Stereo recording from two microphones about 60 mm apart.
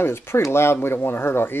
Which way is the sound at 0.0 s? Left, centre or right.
Left.